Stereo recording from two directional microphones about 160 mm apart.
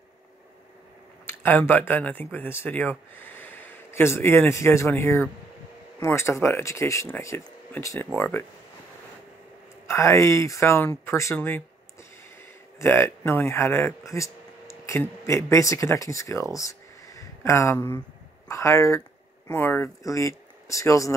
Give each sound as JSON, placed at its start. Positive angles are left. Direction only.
{"t": 1.2, "sound": "speech", "side_deg": 15}
{"t": 9.8, "sound": "speech", "side_deg": 20}
{"t": 16.6, "sound": "a sound", "side_deg": 20}
{"t": 18.5, "sound": "speech", "side_deg": 20}